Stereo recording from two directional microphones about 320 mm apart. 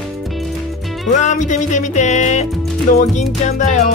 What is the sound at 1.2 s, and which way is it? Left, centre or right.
Speech, left.